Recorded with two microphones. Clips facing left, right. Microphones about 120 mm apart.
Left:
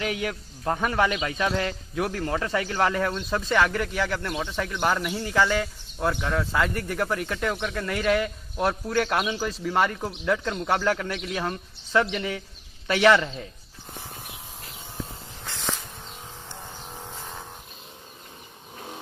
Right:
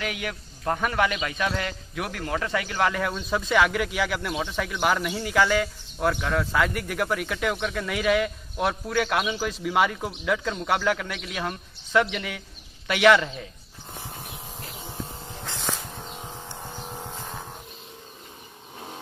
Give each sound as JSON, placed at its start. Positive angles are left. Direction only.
{"t": 0.0, "sound": "a man's voice", "side_deg": 30}
{"t": 3.0, "sound": "speech", "side_deg": -5}
{"t": 12.1, "sound": "a man's voice", "side_deg": 30}
{"t": 12.8, "sound": "speech", "side_deg": -10}